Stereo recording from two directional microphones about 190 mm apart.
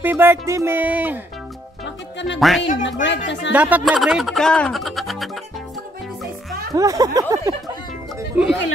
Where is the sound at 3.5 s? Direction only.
5° right (ahead or behind).